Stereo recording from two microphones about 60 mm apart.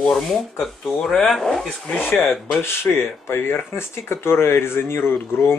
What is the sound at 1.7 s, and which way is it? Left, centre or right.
Speech, centre.